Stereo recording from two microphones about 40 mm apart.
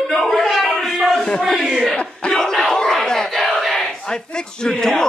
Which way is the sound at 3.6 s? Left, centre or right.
Centre.